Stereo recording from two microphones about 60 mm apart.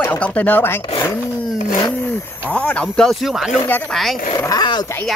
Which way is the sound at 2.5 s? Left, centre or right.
Centre.